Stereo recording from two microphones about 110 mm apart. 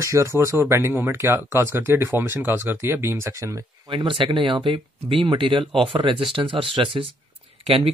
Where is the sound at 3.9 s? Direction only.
50° right (ahead or behind).